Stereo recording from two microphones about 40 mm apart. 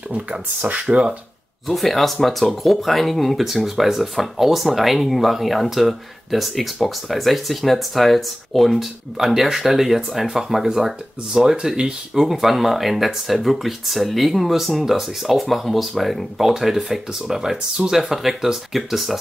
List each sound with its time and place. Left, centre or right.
0.7 s speech: right
1.7 s speech: centre